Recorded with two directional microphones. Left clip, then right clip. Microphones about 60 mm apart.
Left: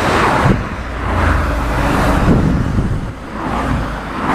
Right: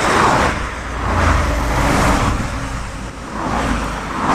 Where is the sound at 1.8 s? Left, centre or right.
Right.